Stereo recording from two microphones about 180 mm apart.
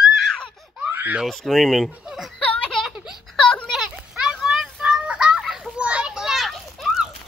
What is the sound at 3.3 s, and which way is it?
Children playing, 5° left (ahead or behind).